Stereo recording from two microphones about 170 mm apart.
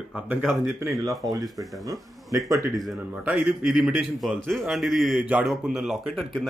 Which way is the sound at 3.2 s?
5° right (ahead or behind).